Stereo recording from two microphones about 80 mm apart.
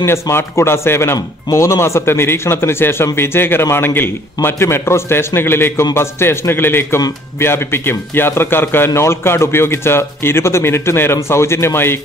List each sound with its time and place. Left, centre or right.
0.0 s a man's voice: left